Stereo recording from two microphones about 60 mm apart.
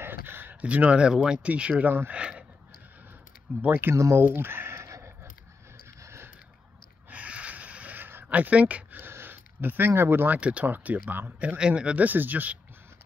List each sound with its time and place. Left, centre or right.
0.0 s a sound: right
0.6 s speech: right
1.9 s speech: right
2.1 s speech: centre
3.6 s speech: right
3.9 s speech: right
4.2 s a sound: right
7.1 s a sound: right
9.0 s speech: right